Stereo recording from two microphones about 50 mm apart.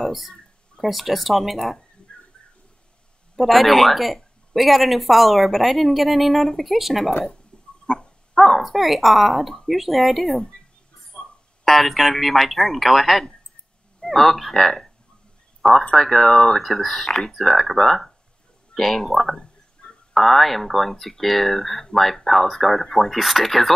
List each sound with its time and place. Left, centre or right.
0.0 s speech: centre
3.3 s speech: centre
7.5 s dog: centre
8.4 s speech: centre
11.1 s a sound: left
11.6 s speech: centre
15.9 s speech: centre